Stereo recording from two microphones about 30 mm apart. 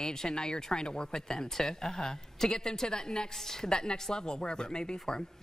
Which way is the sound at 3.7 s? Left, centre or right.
Left.